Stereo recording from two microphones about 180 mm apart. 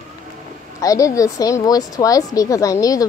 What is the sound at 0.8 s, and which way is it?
A woman's voice, 20° left (ahead or behind).